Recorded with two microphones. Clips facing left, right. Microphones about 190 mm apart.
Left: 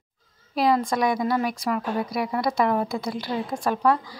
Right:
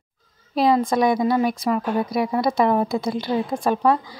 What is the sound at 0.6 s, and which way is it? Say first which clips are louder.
Speech: right 4 dB; 25° right (ahead or behind).